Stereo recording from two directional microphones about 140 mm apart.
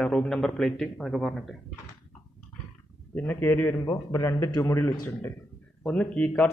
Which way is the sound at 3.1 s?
15° left (ahead or behind).